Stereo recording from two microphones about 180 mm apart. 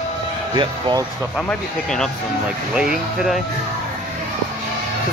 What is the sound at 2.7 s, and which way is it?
Speech, 5° right (ahead or behind).